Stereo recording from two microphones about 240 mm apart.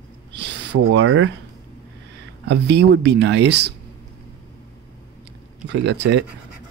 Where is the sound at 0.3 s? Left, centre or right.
Right.